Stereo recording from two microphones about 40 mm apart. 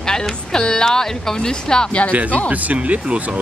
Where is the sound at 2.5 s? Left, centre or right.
Right.